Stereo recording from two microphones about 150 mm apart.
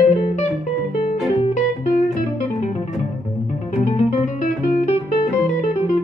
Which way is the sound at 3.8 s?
50° left (ahead or behind).